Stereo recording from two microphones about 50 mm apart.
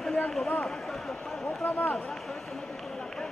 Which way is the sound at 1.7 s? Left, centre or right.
Left.